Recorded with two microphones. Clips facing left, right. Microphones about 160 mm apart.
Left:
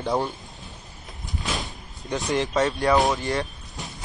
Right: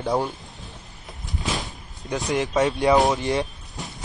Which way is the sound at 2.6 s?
20° right (ahead or behind).